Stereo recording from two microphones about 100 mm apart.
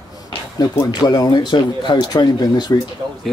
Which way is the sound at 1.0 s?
45° left (ahead or behind).